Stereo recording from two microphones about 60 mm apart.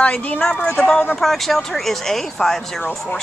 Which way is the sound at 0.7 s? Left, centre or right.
Centre.